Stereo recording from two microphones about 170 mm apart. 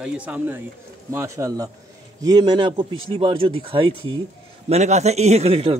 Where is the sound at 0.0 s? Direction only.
10° right (ahead or behind); by 4.2 s 30° right (ahead or behind).